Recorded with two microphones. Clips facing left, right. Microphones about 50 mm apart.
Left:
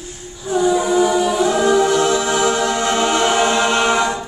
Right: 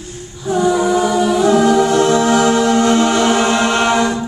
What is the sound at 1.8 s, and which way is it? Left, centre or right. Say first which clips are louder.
A capella: right 3 dB; right.